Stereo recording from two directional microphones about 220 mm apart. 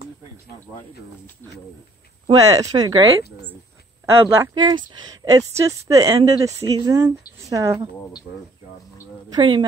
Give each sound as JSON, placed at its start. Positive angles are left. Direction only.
{"t": 2.2, "sound": "speech", "side_deg": -15}
{"t": 9.3, "sound": "speech", "side_deg": -20}